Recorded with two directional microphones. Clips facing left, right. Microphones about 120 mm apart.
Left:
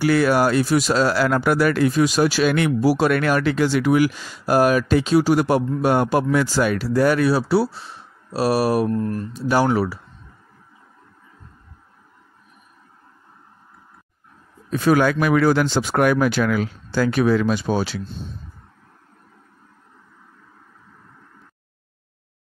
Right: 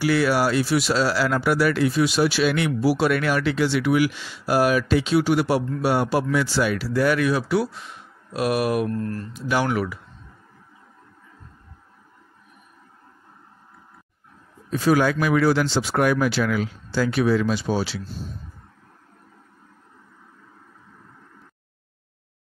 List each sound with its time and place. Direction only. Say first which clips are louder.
0.0 s speech: left 3 dB; 50° left (ahead or behind)
8.9 s speech: left 4 dB; 15° left (ahead or behind)
9.5 s speech: left 4 dB; 35° left (ahead or behind)
14.7 s speech: left 2 dB; 60° left (ahead or behind)